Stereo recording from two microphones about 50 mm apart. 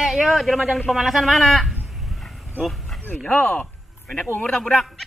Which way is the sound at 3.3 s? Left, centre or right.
Left.